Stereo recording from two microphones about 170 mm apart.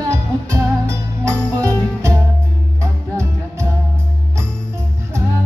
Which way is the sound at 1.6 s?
20° right (ahead or behind).